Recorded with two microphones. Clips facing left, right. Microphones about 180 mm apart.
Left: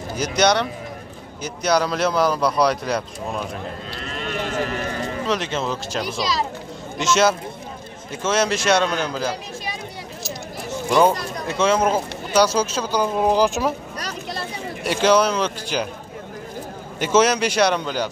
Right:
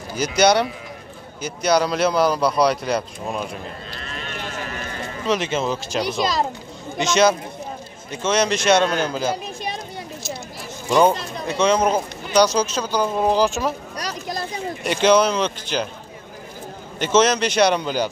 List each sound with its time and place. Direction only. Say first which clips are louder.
0.2 s speech: right 2 dB; 5° right (ahead or behind)
5.2 s speech: right 4 dB; centre (ahead or behind)
7.0 s speech: right 1 dB; 5° left (ahead or behind)
10.9 s speech: right 1 dB; 20° right (ahead or behind)
11.4 s speech: right 1 dB; 5° left (ahead or behind)
14.8 s speech: right 1 dB; 5° left (ahead or behind)
17.0 s speech: even; 10° left (ahead or behind)